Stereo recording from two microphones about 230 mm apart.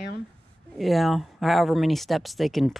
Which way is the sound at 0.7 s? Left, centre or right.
Centre.